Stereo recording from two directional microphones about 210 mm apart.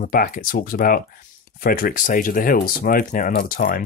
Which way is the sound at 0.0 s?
40° left (ahead or behind).